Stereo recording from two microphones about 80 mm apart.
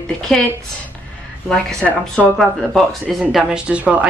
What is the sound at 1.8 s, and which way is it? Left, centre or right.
Speech, centre.